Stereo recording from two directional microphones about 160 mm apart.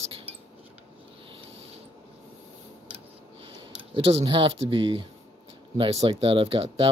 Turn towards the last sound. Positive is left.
turn(degrees=-35)  # may be behind; listen again after turning